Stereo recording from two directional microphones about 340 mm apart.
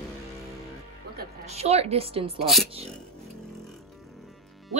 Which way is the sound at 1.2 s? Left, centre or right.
Centre.